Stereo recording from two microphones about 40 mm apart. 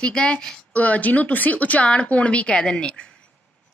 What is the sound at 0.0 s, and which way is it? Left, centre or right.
Speech, left.